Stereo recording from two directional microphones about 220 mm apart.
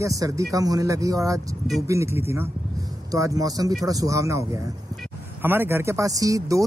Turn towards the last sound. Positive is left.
turn(degrees=-15)  # may be behind; listen again after turning